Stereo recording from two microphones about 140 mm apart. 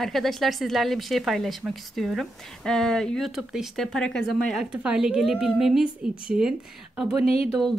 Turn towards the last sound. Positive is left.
turn(degrees=0)  # may be behind; listen again after turning